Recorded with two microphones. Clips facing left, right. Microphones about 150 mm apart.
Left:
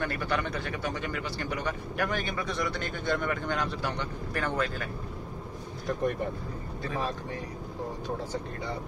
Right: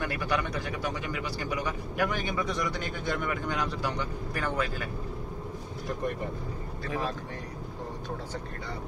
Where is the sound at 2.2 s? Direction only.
10° right (ahead or behind).